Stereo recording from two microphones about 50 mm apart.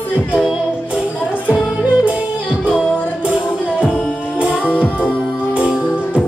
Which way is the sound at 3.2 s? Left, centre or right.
Right.